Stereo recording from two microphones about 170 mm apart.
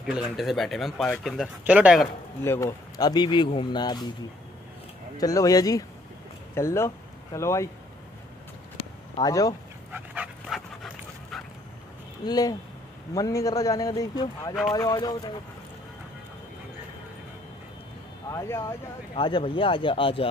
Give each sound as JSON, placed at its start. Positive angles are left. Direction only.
{"t": 0.0, "sound": "speech", "side_deg": 0}
{"t": 2.4, "sound": "speech", "side_deg": 15}
{"t": 5.1, "sound": "speech", "side_deg": 20}
{"t": 9.1, "sound": "speech", "side_deg": 20}
{"t": 9.9, "sound": "dog", "side_deg": -5}
{"t": 12.3, "sound": "speech", "side_deg": 20}
{"t": 18.3, "sound": "speech", "side_deg": 15}
{"t": 19.1, "sound": "speech", "side_deg": 30}